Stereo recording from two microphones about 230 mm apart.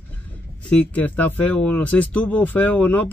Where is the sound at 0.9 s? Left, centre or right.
Centre.